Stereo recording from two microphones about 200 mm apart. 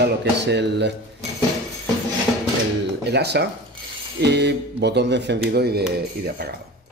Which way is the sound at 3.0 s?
55° right (ahead or behind).